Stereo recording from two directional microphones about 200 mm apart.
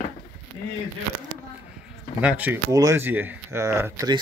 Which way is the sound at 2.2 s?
5° right (ahead or behind).